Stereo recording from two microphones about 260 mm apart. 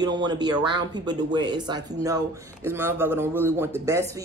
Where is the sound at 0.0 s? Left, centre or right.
Centre.